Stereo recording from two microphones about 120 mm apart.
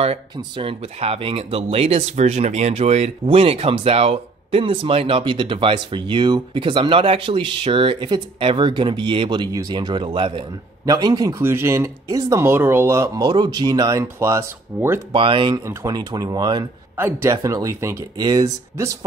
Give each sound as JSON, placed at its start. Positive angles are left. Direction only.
{"t": 0.0, "sound": "speech", "side_deg": -50}
{"t": 10.9, "sound": "speech", "side_deg": -30}
{"t": 11.4, "sound": "speech", "side_deg": -20}
{"t": 13.2, "sound": "speech", "side_deg": -35}
{"t": 15.1, "sound": "speech", "side_deg": -45}
{"t": 15.5, "sound": "speech", "side_deg": -30}
{"t": 16.9, "sound": "speech", "side_deg": -20}